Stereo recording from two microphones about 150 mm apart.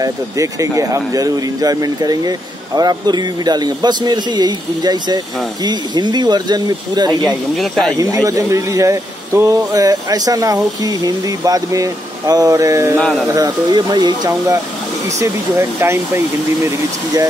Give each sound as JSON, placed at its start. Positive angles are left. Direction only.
{"t": 0.0, "sound": "speech", "side_deg": -20}
{"t": 7.2, "sound": "speech", "side_deg": 0}
{"t": 8.0, "sound": "speech", "side_deg": -25}
{"t": 13.0, "sound": "speech", "side_deg": 5}
{"t": 13.3, "sound": "speech", "side_deg": -30}